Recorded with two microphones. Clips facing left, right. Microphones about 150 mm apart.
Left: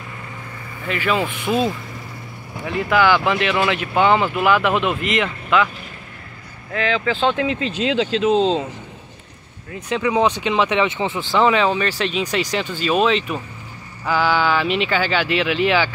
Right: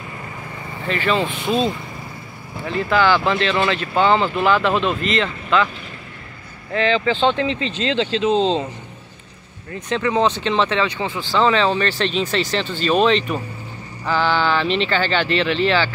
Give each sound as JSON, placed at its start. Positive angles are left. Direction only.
{"t": 0.8, "sound": "speech", "side_deg": 10}
{"t": 2.6, "sound": "speech", "side_deg": 10}
{"t": 6.7, "sound": "speech", "side_deg": 5}
{"t": 9.7, "sound": "speech", "side_deg": 10}